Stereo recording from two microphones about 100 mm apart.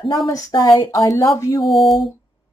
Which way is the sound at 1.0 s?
35° left (ahead or behind).